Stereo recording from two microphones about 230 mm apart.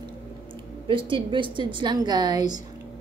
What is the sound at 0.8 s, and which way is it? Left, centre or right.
A woman's voice, right.